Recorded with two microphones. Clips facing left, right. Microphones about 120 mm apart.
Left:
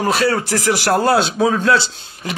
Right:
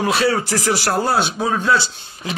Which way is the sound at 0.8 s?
80° left.